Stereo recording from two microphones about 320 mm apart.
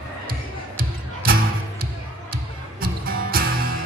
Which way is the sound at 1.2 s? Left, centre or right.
Right.